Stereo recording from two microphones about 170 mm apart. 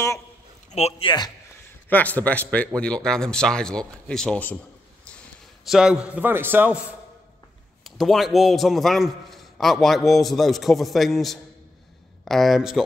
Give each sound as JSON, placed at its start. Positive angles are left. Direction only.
{"t": 0.7, "sound": "a sound", "side_deg": 40}
{"t": 1.9, "sound": "a man's voice", "side_deg": 10}
{"t": 5.7, "sound": "a man's voice", "side_deg": -5}